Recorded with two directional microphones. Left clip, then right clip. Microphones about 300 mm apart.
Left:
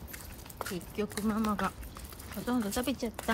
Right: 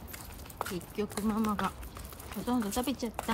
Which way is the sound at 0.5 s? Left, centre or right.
Centre.